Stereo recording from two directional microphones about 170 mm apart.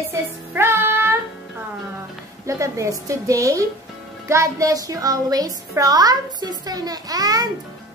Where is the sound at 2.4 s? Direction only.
20° right (ahead or behind).